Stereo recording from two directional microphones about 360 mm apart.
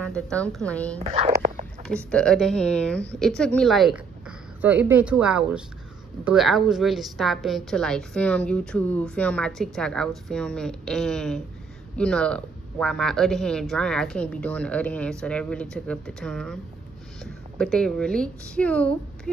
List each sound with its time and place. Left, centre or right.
0.0 s a woman's voice: centre
0.9 s speech: centre
1.9 s a woman's voice: centre